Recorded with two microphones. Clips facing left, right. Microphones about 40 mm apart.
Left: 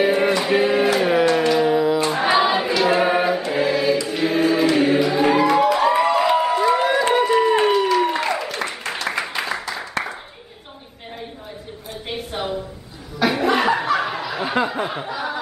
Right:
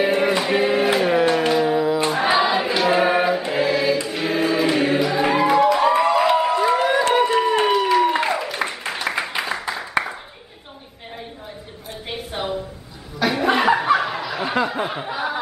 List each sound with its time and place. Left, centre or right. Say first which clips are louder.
0.0 s music: left 1 dB; centre
0.4 s a sound: left 1 dB; centre
0.9 s music: left 1 dB; centre
2.0 s choir: left 1 dB; centre
4.1 s music: left 2 dB; centre
4.7 s choir: left 2 dB; centre
5.6 s a sound: even; centre
7.2 s applause: left 1 dB; centre
12.1 s a sound: even; centre
13.2 s chuckle: left 1 dB; centre
13.5 s laughter: right 3 dB; centre
13.9 s snicker: even; centre
15.0 s snicker: right 1 dB; centre